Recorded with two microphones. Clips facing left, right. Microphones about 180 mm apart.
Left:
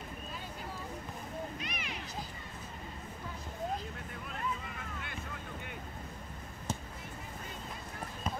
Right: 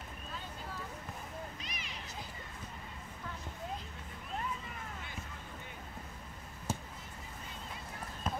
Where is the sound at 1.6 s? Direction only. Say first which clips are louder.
Left 6 dB; 65° left (ahead or behind).